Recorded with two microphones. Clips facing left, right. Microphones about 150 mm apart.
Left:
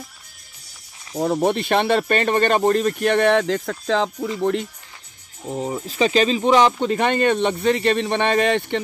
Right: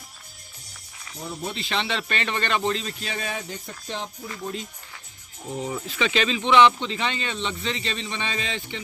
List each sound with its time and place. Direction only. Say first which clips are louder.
1.1 s speech: left 14 dB; 85° left
4.4 s speech: left 12 dB; 70° left (ahead or behind)
5.5 s speech: left 4 dB; 30° left (ahead or behind); by 8.8 s 60° left (ahead or behind)